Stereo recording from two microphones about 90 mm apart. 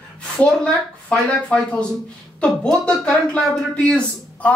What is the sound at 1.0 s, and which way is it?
Speech, 10° left (ahead or behind).